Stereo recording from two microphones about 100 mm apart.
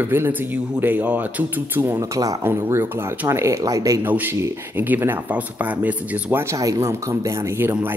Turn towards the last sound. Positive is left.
turn(degrees=-20)  # may be behind; listen again after turning